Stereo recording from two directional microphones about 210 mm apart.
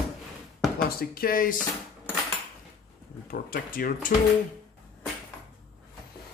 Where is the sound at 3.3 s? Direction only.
45° left (ahead or behind).